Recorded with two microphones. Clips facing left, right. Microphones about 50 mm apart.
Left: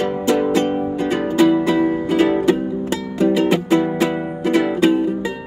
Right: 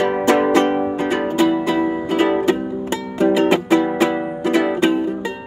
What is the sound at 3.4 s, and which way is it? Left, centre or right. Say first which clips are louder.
Music: right 1 dB; right.